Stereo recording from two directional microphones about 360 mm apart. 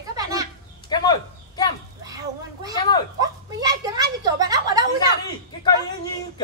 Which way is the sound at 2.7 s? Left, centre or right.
Centre.